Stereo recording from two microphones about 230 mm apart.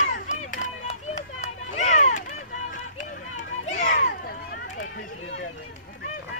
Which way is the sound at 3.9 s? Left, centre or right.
Left.